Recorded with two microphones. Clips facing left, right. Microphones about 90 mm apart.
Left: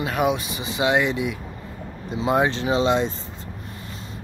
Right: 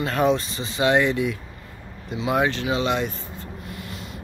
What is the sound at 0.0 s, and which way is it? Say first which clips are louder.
Speech: right 1 dB; 10° left (ahead or behind).